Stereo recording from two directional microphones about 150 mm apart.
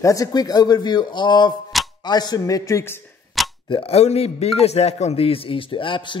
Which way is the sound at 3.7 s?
40° left (ahead or behind).